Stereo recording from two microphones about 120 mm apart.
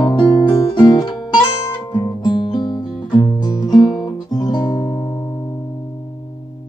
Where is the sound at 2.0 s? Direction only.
35° left (ahead or behind).